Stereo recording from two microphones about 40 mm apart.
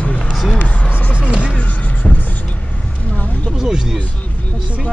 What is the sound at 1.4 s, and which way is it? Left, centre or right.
Music, left.